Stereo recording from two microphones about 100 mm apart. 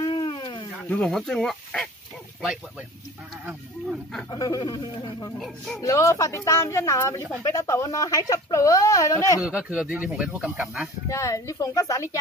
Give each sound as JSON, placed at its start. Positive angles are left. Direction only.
{"t": 0.0, "sound": "a sound", "side_deg": 45}
{"t": 0.8, "sound": "speech", "side_deg": 10}
{"t": 4.3, "sound": "speech", "side_deg": 40}
{"t": 5.8, "sound": "a woman's voice", "side_deg": 35}
{"t": 9.4, "sound": "speech", "side_deg": -10}
{"t": 11.1, "sound": "speech", "side_deg": 30}